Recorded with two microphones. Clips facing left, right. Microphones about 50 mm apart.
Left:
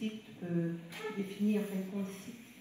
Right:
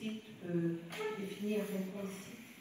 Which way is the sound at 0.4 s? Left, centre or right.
Left.